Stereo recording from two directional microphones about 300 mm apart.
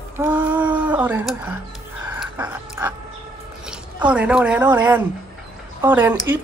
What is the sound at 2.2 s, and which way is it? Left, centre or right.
Dog, centre.